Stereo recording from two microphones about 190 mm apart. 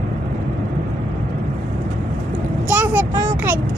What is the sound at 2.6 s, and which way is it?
Speech, 10° right (ahead or behind).